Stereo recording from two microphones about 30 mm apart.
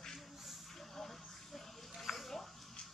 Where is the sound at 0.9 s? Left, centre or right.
Centre.